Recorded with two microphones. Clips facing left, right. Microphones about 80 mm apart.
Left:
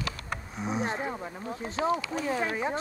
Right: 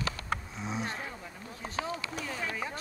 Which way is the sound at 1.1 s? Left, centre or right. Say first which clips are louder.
Left 8 dB; left.